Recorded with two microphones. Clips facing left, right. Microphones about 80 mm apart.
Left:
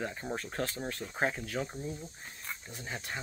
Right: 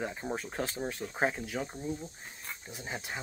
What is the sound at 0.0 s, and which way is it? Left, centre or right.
Speech, centre.